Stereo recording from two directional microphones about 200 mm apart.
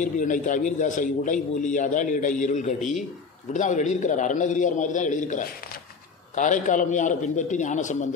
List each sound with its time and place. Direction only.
0.0 s a man's voice: 40° left (ahead or behind)